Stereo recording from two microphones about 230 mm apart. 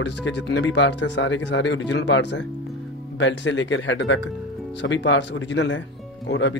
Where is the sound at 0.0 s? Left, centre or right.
Left.